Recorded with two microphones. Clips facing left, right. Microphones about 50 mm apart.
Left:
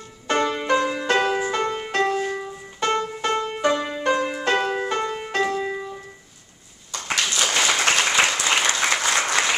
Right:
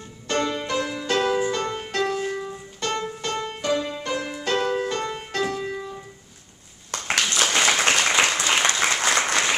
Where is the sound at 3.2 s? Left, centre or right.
Left.